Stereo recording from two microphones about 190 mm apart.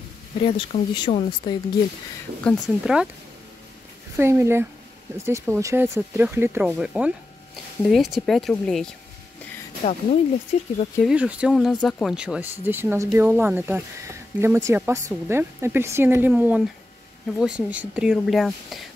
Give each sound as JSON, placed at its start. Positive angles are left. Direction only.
{"t": 0.6, "sound": "speech", "side_deg": 25}
{"t": 2.4, "sound": "speech", "side_deg": 0}
{"t": 4.2, "sound": "speech", "side_deg": -15}
{"t": 9.8, "sound": "speech", "side_deg": 30}
{"t": 11.0, "sound": "speech", "side_deg": -5}